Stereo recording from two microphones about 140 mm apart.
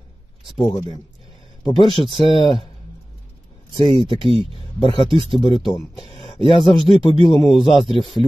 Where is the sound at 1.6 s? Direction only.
35° left (ahead or behind).